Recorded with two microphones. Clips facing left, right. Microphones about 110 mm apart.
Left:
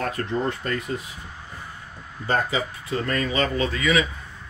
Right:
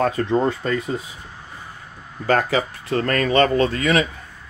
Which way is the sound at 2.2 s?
80° right.